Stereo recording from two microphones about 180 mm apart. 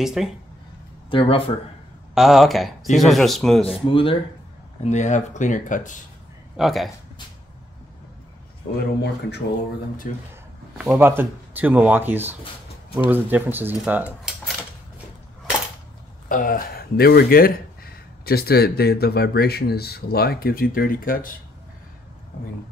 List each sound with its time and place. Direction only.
0.0 s speech: centre (ahead or behind)
1.1 s speech: 30° left (ahead or behind)
2.1 s speech: centre (ahead or behind)
3.8 s speech: 30° left (ahead or behind)
4.8 s speech: 40° left (ahead or behind)
6.5 s speech: centre (ahead or behind)
8.7 s speech: 70° left (ahead or behind)
10.1 s speech: 45° left (ahead or behind)
10.8 s speech: 10° right (ahead or behind)
16.3 s speech: 50° left (ahead or behind)